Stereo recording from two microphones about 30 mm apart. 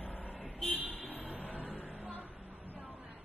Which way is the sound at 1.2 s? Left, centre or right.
Right.